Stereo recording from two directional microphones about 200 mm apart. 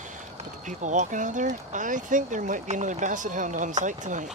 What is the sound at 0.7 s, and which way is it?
Speech, 40° right (ahead or behind).